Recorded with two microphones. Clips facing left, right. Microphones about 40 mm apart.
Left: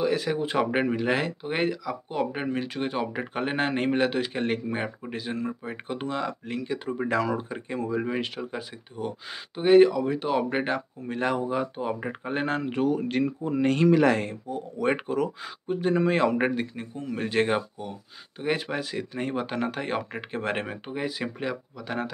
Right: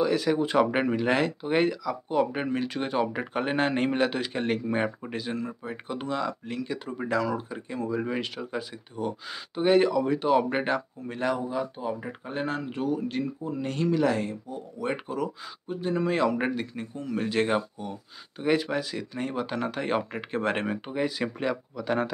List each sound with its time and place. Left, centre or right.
0.0 s speech: centre
4.6 s speech: centre
5.1 s speech: centre
7.1 s speech: left; by 10.8 s centre
11.1 s speech: left
11.3 s speech: left
16.1 s speech: left; by 17.9 s centre
18.6 s speech: left
19.8 s speech: centre